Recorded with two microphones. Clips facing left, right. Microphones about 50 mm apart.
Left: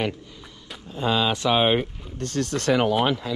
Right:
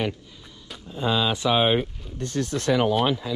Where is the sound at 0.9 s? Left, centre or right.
Left.